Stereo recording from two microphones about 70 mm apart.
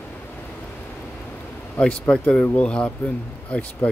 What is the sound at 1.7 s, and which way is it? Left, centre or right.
Speech, centre.